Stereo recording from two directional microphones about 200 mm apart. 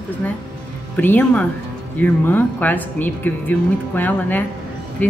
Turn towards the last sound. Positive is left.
turn(degrees=10)  # may be behind; listen again after turning